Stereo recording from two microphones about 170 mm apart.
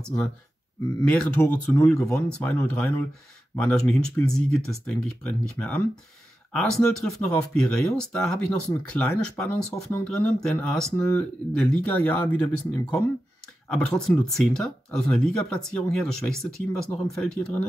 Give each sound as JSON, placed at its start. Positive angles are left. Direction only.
{"t": 1.0, "sound": "speech", "side_deg": 5}